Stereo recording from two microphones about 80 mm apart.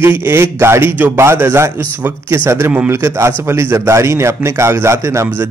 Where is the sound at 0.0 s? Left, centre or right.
Right.